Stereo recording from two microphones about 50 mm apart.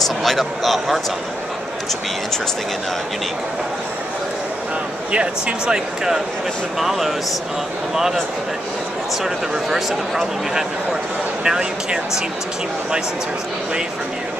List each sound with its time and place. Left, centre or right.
0.0 s speech: centre
5.1 s speech: right
6.8 s speech: centre
9.2 s speech: centre